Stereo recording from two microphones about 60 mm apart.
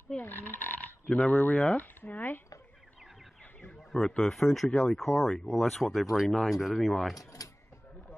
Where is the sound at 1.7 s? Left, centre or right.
Left.